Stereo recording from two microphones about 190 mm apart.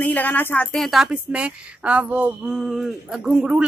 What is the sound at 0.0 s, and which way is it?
A woman's voice, 10° left (ahead or behind).